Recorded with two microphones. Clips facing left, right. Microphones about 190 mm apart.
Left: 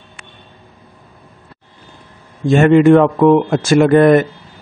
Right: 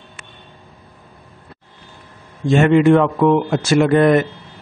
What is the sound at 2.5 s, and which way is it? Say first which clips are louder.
Speech: left 3 dB; 45° left (ahead or behind).